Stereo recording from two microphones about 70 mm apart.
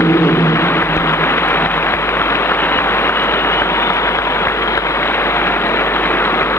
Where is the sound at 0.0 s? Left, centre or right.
Left.